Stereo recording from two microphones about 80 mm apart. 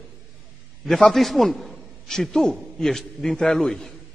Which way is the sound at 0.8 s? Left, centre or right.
Centre.